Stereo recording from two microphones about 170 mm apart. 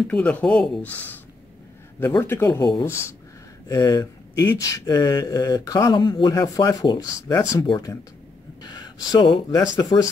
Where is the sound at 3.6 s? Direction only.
20° left (ahead or behind).